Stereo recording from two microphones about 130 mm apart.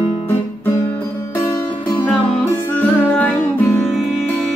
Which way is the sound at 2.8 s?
15° left (ahead or behind).